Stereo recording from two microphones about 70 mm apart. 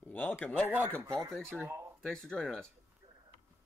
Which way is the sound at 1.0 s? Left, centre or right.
Right.